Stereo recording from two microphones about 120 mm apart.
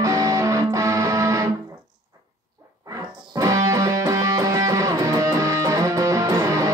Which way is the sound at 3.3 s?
30° right (ahead or behind).